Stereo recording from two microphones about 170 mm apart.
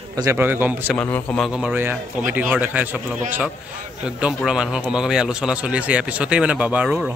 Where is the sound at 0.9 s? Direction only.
10° left (ahead or behind); by 3.0 s 10° right (ahead or behind).